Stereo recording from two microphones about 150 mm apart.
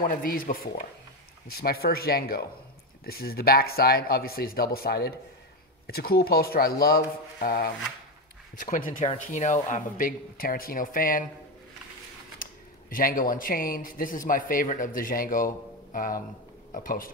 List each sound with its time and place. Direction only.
0.0 s a man's voice: 75° left (ahead or behind)
1.5 s speech: 90° left
8.5 s speech: 60° left (ahead or behind)
9.0 s a man's voice: 45° left (ahead or behind); by 11.2 s 65° left (ahead or behind)
12.9 s a man's voice: 65° left (ahead or behind)